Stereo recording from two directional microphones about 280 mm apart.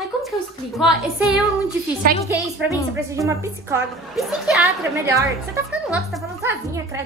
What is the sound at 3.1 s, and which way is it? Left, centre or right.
A woman's voice, centre.